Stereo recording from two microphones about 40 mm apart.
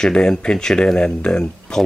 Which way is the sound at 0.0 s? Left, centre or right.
Centre.